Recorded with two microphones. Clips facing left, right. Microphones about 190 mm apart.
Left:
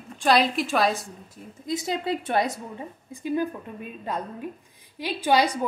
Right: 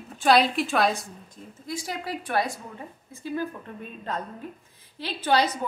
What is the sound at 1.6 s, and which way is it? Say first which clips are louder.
Speech: left 6 dB; 20° left (ahead or behind).